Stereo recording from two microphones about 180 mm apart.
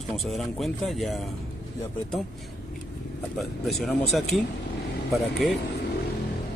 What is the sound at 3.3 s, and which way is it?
Speech, centre (ahead or behind).